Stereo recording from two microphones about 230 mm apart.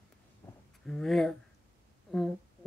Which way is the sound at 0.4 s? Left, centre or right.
Centre.